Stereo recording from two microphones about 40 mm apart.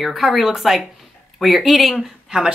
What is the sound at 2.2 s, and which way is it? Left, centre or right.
Speech, centre.